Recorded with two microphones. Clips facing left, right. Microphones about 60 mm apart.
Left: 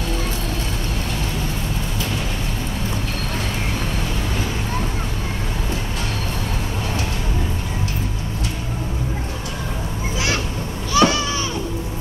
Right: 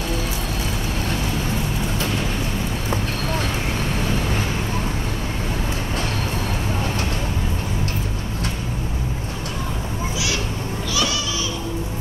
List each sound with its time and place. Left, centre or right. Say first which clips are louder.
10.9 s goat: left 8 dB; left